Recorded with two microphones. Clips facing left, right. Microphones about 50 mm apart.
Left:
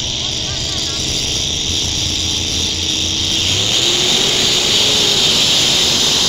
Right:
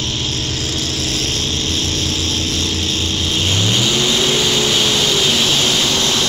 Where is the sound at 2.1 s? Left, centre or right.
Right.